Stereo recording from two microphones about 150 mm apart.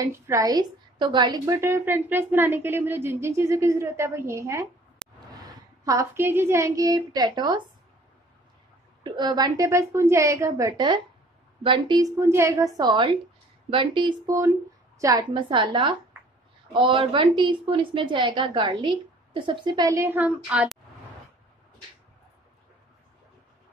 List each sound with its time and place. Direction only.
0.0 s a woman's voice: 20° right (ahead or behind)
9.0 s a woman's voice: 30° right (ahead or behind)
11.6 s a woman's voice: 35° right (ahead or behind)
12.0 s a woman's voice: 20° right (ahead or behind)